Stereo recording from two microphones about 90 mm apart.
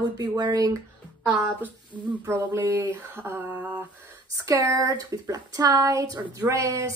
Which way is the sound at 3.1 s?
25° right (ahead or behind).